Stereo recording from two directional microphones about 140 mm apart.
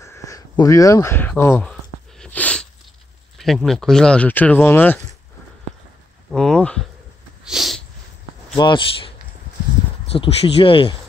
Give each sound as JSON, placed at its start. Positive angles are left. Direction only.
{"t": 0.0, "sound": "speech", "side_deg": 20}
{"t": 1.6, "sound": "a sound", "side_deg": 5}
{"t": 3.3, "sound": "speech", "side_deg": 0}
{"t": 6.3, "sound": "speech", "side_deg": 5}
{"t": 7.4, "sound": "a sound", "side_deg": 0}
{"t": 8.5, "sound": "speech", "side_deg": 35}
{"t": 10.1, "sound": "speech", "side_deg": 40}